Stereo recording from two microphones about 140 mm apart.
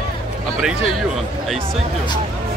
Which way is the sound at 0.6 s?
5° right (ahead or behind).